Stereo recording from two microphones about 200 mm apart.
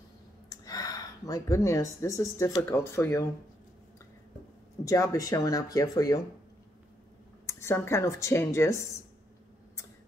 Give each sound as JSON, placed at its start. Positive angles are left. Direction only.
{"t": 0.5, "sound": "speech", "side_deg": 20}
{"t": 4.8, "sound": "speech", "side_deg": 15}
{"t": 7.4, "sound": "speech", "side_deg": 15}